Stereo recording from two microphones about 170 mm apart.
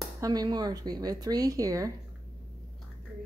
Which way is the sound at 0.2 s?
20° right (ahead or behind).